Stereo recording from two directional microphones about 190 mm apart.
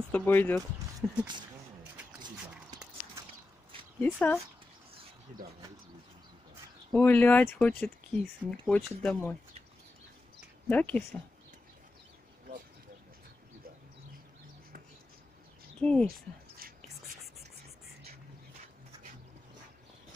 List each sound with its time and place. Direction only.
0.1 s speech: 10° left (ahead or behind)
4.0 s speech: 10° left (ahead or behind)
6.9 s speech: 10° left (ahead or behind)
10.7 s speech: 10° left (ahead or behind)
15.8 s speech: 5° left (ahead or behind)
16.1 s a sound: 50° right (ahead or behind)